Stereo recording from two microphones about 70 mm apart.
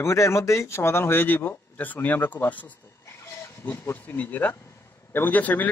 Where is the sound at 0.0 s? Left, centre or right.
Left.